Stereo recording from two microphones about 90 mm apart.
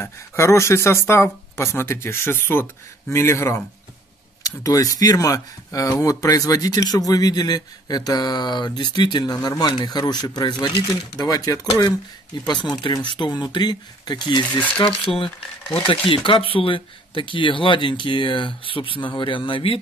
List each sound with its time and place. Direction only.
0.0 s speech: 30° left (ahead or behind)
4.6 s speech: 40° left (ahead or behind); by 9.2 s 60° left (ahead or behind)
9.2 s speech: 45° left (ahead or behind)
12.4 s speech: 55° left (ahead or behind)
15.0 s speech: 85° left
15.7 s speech: 70° left (ahead or behind)